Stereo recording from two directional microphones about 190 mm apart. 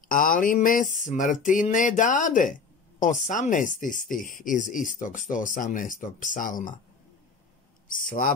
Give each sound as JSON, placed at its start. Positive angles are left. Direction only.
{"t": 0.1, "sound": "speech", "side_deg": 45}
{"t": 7.9, "sound": "speech", "side_deg": 45}